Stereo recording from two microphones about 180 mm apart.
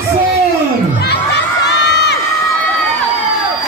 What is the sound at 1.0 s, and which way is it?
Crowd, 70° left (ahead or behind).